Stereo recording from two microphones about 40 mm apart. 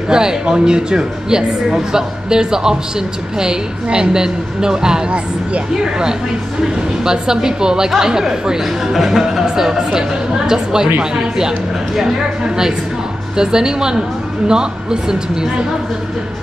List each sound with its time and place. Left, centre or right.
0.1 s speech: centre
7.1 s speech: centre